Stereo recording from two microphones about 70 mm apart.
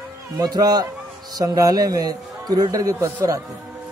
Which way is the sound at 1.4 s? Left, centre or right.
Right.